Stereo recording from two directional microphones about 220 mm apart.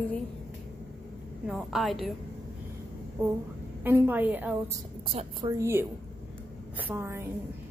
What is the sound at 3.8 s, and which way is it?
Speech, 10° right (ahead or behind).